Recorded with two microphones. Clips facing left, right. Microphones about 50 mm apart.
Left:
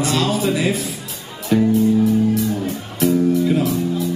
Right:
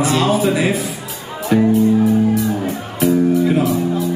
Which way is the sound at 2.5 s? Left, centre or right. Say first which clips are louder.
Right 2 dB; centre.